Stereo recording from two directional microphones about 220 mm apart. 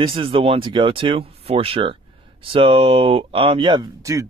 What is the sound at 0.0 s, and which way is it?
Speech, 25° right (ahead or behind).